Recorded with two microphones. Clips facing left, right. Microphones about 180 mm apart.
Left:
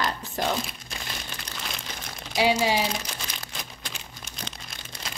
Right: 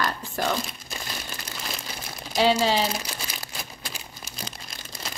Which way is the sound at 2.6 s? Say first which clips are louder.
Right 1 dB; 10° left (ahead or behind).